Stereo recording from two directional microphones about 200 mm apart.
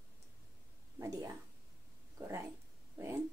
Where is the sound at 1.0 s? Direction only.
15° right (ahead or behind).